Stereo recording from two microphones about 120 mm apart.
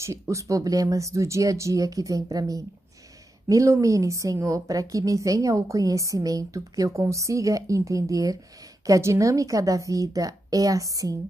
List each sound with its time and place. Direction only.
0.0 s a woman's voice: 25° right (ahead or behind)